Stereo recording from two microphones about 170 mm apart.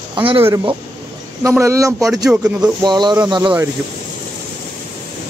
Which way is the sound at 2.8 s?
25° right (ahead or behind).